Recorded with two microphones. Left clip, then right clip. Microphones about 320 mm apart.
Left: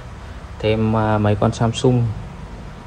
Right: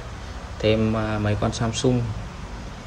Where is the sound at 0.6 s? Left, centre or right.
Centre.